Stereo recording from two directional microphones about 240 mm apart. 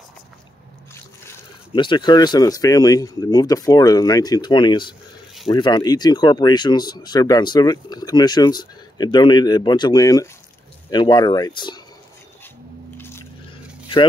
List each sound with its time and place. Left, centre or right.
1.7 s speech: centre
12.9 s squish: centre